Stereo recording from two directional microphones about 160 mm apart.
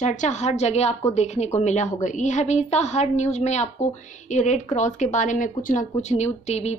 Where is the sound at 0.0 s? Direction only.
50° left (ahead or behind).